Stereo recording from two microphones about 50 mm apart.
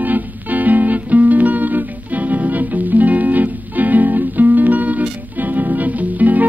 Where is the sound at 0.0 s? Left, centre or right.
Right.